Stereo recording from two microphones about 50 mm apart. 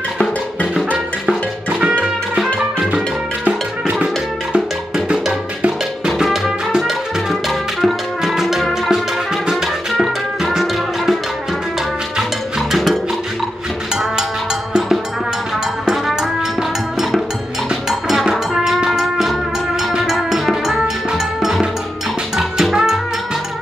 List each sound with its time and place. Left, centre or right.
1.7 s music: right
2.3 s music: centre
4.0 s music: centre
12.2 s music: centre
14.7 s music: centre
17.8 s music: centre